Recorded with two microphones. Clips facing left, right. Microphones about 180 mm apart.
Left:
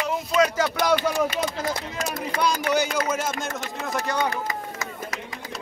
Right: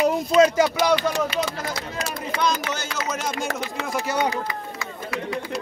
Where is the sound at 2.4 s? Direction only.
15° left (ahead or behind).